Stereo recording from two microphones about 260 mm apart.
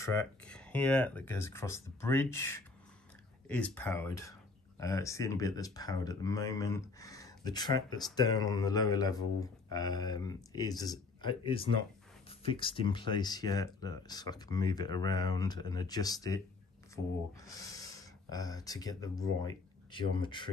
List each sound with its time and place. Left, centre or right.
0.0 s speech: centre
17.5 s speech: centre